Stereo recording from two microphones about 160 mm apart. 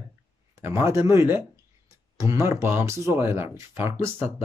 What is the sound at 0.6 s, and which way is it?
Speech, 15° right (ahead or behind).